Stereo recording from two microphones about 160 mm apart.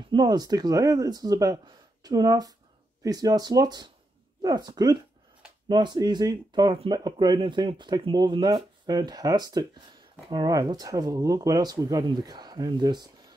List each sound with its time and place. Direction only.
0.1 s speech: 25° right (ahead or behind)